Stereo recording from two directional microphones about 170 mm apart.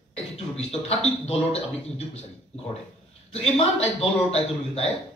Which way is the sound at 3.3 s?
35° left (ahead or behind).